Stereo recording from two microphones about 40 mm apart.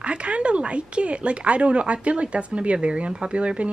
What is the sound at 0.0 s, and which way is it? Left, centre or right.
A woman's voice, right.